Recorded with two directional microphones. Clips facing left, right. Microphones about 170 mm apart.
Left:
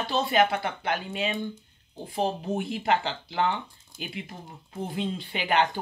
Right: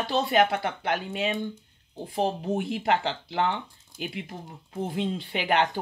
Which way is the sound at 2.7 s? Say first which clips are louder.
Left 1 dB; 70° right (ahead or behind).